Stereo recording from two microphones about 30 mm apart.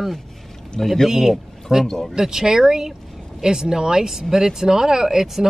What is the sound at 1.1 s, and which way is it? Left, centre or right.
Speech, centre.